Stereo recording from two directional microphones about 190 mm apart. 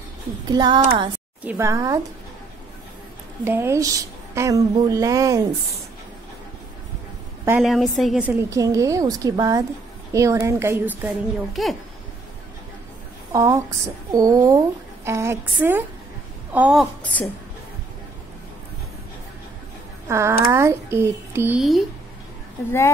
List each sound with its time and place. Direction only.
0.5 s speech: 20° right (ahead or behind)
1.4 s a woman's voice: 10° right (ahead or behind)
3.4 s a woman's voice: 15° right (ahead or behind)
7.4 s a woman's voice: 5° right (ahead or behind)
13.3 s a woman's voice: 15° right (ahead or behind)
17.0 s a woman's voice: 10° left (ahead or behind)
20.1 s a woman's voice: 15° right (ahead or behind)